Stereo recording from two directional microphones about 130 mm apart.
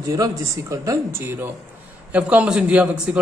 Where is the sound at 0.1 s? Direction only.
25° right (ahead or behind).